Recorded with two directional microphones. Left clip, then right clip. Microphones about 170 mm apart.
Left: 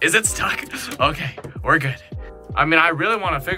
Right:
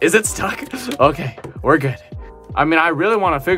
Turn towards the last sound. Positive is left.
turn(degrees=-40)  # may be behind; listen again after turning